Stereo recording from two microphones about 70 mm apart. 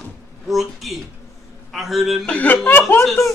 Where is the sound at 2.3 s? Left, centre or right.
Left.